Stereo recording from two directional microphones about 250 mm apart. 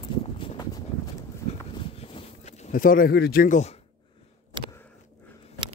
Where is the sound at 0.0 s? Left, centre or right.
Left.